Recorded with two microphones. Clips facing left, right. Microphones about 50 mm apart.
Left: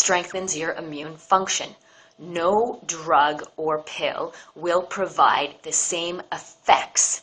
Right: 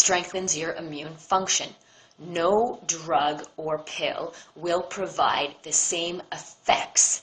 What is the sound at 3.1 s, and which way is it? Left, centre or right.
A woman's voice, left.